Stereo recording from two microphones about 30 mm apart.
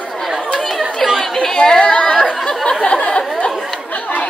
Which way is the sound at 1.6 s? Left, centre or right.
Left.